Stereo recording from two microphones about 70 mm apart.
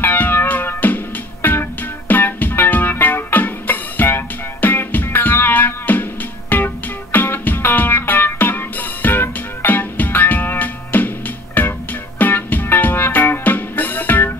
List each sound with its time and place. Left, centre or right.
0.0 s music: left